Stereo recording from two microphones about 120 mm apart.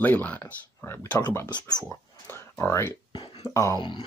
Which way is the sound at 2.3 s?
20° left (ahead or behind).